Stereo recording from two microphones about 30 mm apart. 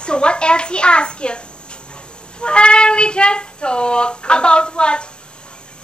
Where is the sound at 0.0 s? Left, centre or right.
Left.